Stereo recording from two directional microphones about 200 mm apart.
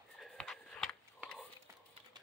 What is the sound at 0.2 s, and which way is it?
Whispering, centre (ahead or behind).